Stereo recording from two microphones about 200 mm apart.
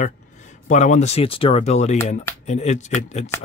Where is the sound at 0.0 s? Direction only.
40° left (ahead or behind).